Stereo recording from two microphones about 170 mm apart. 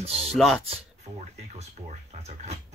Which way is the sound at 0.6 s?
40° right (ahead or behind).